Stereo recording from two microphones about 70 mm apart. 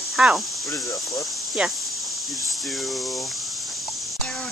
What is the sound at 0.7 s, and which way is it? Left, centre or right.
Speech, left.